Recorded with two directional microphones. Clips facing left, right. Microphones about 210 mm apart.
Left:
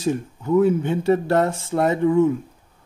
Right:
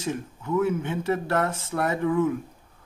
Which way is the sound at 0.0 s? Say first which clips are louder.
Left 7 dB; 35° left (ahead or behind).